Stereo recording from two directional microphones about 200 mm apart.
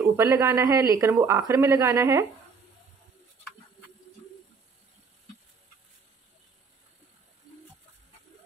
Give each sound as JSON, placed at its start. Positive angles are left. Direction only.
{"t": 0.1, "sound": "speech", "side_deg": -15}